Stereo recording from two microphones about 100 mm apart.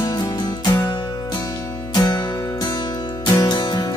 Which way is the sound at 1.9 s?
45° left (ahead or behind).